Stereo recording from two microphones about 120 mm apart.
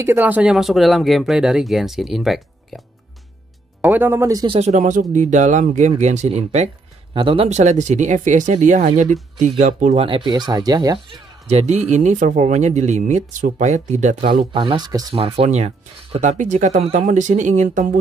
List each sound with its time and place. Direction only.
0.0 s speech: 20° right (ahead or behind)
0.5 s speech: centre (ahead or behind)
3.8 s speech: 15° right (ahead or behind)
4.6 s speech: 85° right
7.2 s speech: 45° right (ahead or behind)
7.4 s speech: 70° right (ahead or behind); by 9.9 s 90° right
9.9 s speech: 45° right (ahead or behind)
11.4 s speech: 65° right (ahead or behind)
14.5 s speech: 45° right (ahead or behind)
15.1 s speech: 55° right (ahead or behind); by 17.9 s 90° right